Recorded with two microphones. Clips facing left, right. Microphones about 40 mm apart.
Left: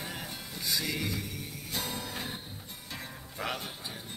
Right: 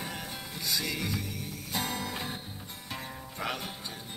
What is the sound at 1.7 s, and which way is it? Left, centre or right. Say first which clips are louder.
Music: right 3 dB; centre.